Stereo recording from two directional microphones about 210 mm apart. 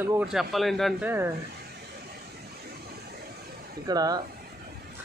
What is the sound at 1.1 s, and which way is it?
Speech, 10° right (ahead or behind).